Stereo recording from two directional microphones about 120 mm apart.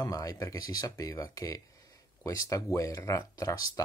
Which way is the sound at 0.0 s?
30° left (ahead or behind).